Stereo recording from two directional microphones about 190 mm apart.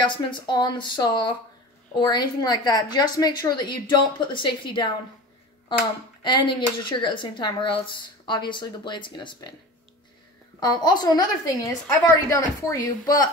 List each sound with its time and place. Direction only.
0.0 s speech: 25° left (ahead or behind)
6.2 s speech: 25° left (ahead or behind)
10.6 s speech: 20° left (ahead or behind)